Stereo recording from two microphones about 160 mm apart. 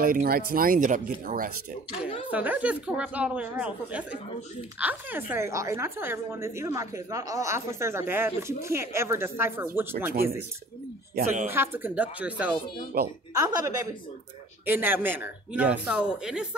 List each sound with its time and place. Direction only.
0.0 s speech: 65° right (ahead or behind)
2.3 s a woman's voice: 10° right (ahead or behind)
11.4 s a woman's voice: 15° right (ahead or behind)